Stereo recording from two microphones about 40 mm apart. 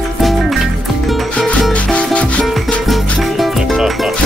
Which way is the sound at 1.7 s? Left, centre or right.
Left.